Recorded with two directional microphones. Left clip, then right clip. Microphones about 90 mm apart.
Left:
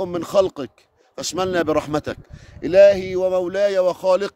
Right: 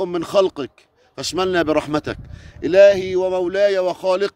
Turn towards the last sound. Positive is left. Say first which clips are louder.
# left 1 dB
turn(degrees=60)  # may be behind; listen again after turning